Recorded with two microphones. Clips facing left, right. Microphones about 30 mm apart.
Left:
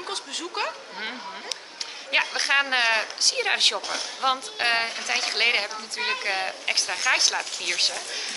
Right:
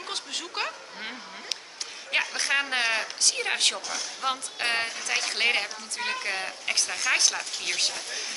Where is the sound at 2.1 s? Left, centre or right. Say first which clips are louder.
Left 4 dB; left.